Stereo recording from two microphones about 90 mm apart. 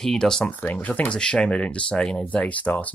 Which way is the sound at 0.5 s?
15° left (ahead or behind).